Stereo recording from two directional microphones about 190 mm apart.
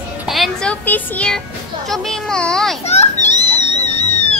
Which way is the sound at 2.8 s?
35° left (ahead or behind).